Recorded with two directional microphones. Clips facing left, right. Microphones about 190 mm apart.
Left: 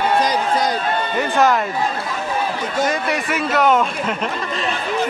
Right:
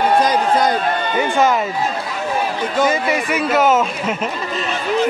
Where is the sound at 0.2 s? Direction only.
55° right (ahead or behind).